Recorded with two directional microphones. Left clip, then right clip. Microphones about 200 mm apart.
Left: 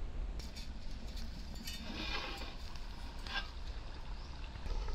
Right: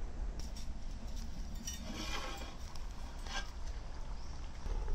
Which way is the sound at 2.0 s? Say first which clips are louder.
Left 2 dB; 5° right (ahead or behind).